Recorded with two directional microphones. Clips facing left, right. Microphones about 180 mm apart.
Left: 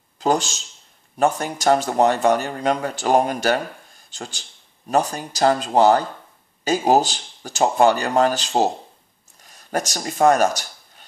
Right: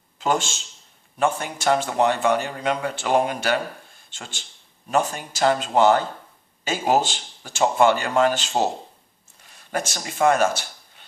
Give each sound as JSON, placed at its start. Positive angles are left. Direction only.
{"t": 0.2, "sound": "speech", "side_deg": 40}